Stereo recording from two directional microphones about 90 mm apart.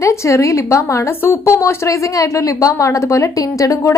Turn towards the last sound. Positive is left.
turn(degrees=35)  # may be behind; listen again after turning